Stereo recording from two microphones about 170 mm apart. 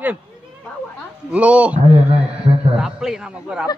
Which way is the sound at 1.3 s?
10° right (ahead or behind).